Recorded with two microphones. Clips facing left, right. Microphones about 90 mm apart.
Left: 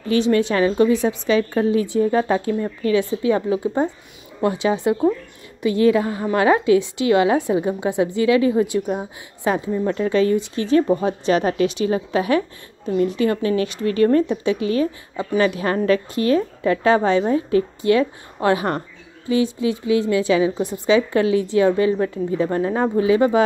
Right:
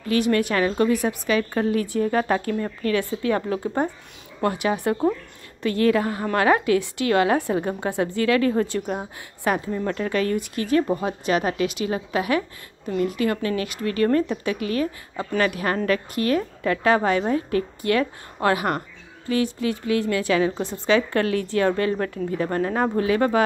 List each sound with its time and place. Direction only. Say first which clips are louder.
0.1 s a woman's voice: left 3 dB; 25° left (ahead or behind)
9.4 s a woman's voice: left 3 dB; 25° left (ahead or behind)